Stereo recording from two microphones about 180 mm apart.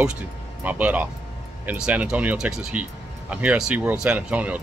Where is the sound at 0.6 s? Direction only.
10° right (ahead or behind).